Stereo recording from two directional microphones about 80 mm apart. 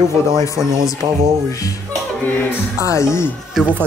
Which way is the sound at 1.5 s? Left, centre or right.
Left.